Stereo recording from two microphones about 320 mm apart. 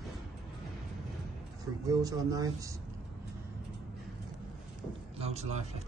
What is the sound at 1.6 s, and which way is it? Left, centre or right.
Speech, centre.